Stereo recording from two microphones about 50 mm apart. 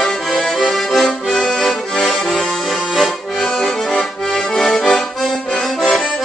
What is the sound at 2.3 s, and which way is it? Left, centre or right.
Accordion, centre.